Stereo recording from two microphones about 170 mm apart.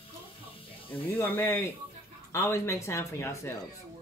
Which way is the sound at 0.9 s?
10° left (ahead or behind).